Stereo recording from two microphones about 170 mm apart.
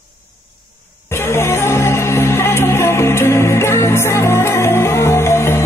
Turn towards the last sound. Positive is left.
turn(degrees=15)  # may be behind; listen again after turning